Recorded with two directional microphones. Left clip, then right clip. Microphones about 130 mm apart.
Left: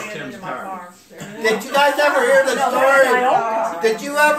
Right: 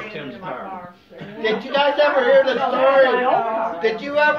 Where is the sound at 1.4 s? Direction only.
50° left (ahead or behind).